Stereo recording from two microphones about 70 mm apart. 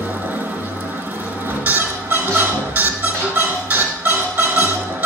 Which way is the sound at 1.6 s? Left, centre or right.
Right.